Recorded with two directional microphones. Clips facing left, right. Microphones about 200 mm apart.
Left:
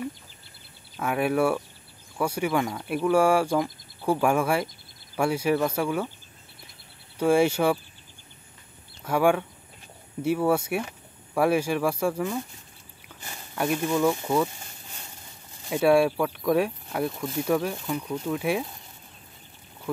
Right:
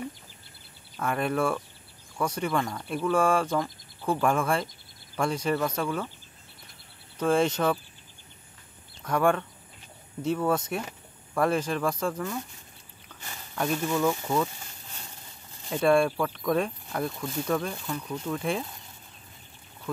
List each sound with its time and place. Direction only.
0.9 s speech: 10° left (ahead or behind)
7.2 s speech: 10° left (ahead or behind)
9.0 s speech: 5° left (ahead or behind)
13.6 s speech: 10° left (ahead or behind)
15.7 s speech: 5° left (ahead or behind)